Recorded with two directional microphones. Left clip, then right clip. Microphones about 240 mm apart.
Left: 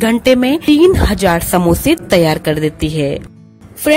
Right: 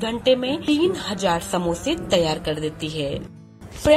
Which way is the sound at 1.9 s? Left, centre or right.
Left.